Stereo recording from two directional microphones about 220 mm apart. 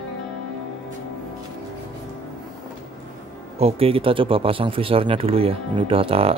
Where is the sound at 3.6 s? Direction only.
25° right (ahead or behind).